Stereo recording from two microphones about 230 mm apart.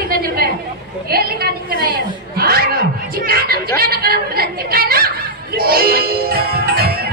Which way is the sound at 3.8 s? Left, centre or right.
Right.